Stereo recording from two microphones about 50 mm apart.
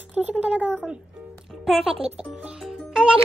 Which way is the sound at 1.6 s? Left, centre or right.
Centre.